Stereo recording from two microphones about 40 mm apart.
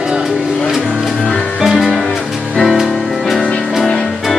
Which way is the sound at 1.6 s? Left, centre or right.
Centre.